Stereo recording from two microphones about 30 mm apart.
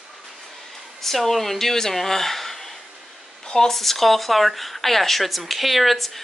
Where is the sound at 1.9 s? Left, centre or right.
Centre.